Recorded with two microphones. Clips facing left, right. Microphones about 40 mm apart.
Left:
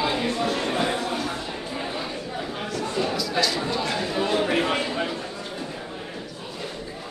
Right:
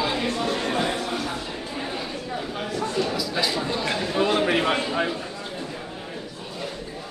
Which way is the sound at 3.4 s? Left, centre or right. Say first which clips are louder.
Left 1 dB; centre.